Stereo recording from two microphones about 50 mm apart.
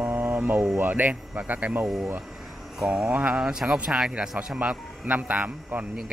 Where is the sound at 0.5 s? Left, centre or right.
Right.